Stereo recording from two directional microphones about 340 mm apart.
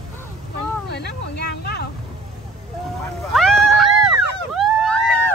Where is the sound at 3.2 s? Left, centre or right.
Centre.